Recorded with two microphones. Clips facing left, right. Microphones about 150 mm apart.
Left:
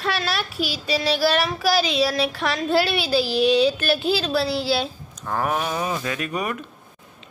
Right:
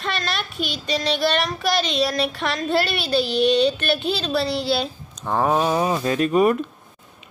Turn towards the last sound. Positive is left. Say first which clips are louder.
# right 9 dB
turn(degrees=-30)  # may be behind; listen again after turning